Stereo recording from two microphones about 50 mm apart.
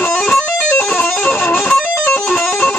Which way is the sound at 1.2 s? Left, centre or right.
Left.